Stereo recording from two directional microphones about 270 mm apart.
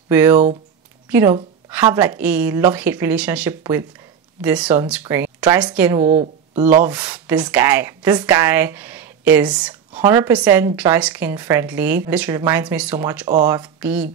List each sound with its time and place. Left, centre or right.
0.1 s speech: centre
6.0 s speech: right
6.8 s speech: centre